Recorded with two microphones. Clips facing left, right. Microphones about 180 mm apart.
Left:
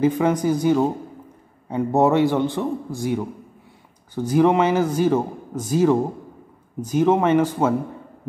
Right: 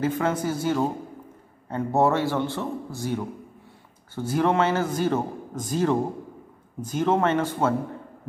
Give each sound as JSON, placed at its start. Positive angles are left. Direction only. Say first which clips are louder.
{"t": 0.0, "sound": "a man's voice", "louder": "left 6 dB", "side_deg": 15}